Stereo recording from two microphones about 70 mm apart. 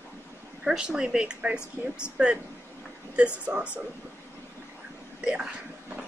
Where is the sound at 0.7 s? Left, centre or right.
Centre.